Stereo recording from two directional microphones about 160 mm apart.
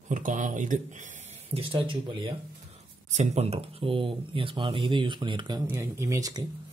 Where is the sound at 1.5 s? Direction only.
35° right (ahead or behind).